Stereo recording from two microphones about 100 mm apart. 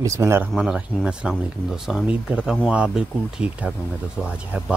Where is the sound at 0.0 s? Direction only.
30° right (ahead or behind).